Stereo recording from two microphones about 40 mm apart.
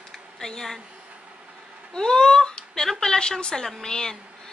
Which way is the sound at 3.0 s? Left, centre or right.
Centre.